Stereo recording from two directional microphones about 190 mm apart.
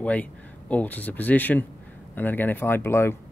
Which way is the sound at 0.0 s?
5° left (ahead or behind).